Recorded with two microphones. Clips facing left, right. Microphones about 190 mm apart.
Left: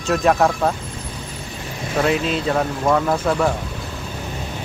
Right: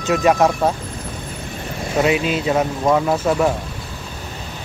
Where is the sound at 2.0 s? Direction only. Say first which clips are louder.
Right 1 dB; 5° right (ahead or behind).